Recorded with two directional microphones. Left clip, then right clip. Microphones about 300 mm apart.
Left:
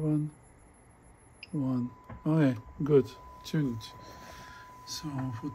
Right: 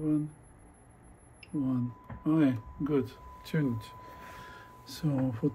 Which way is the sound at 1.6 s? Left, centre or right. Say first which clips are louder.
Left 1 dB; left.